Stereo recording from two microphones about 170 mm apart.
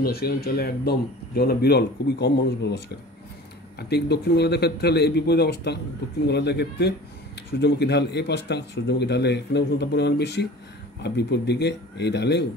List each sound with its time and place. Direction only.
0.0 s speech: 65° left (ahead or behind); by 2.8 s 85° left
3.9 s a man's voice: 75° left (ahead or behind)